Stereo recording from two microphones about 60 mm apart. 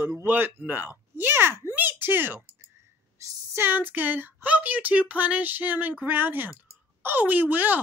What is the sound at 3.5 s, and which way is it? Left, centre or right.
Speech, right.